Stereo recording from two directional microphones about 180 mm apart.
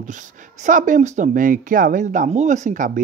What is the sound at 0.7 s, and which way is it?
Speech, 45° right (ahead or behind).